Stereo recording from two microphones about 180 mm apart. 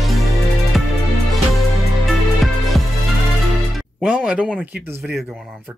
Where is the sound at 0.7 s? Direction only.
Centre (ahead or behind).